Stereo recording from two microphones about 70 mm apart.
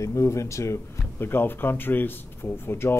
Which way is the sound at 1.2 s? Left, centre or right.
Left.